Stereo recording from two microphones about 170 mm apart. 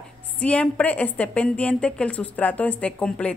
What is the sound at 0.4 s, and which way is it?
A woman's voice, 5° left (ahead or behind).